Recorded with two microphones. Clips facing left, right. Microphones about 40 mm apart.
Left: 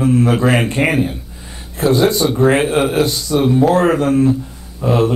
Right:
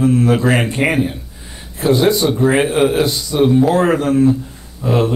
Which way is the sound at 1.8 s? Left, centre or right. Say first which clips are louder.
Even; centre.